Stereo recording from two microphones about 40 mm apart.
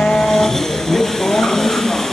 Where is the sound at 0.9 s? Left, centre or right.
Centre.